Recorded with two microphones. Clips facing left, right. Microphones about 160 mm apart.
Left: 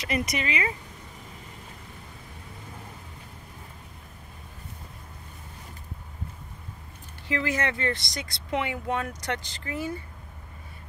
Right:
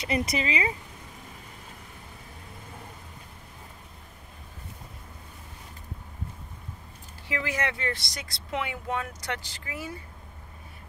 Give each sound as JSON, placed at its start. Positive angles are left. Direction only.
{"t": 0.0, "sound": "speech", "side_deg": -30}
{"t": 7.2, "sound": "speech", "side_deg": -10}